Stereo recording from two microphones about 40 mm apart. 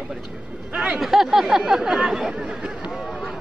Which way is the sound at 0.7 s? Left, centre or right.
Right.